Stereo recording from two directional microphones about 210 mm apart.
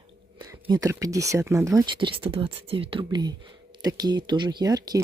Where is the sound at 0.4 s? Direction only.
15° right (ahead or behind).